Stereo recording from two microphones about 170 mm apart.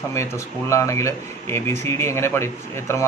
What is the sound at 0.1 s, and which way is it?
Speech, 15° left (ahead or behind).